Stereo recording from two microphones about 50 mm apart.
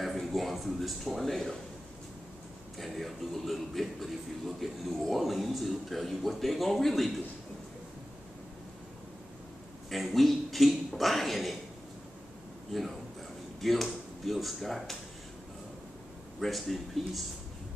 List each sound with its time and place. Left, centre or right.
0.0 s a sound: centre
1.3 s speech: centre
2.8 s a man's voice: centre
9.8 s a man's voice: centre
13.6 s a man's voice: centre
16.3 s a man's voice: centre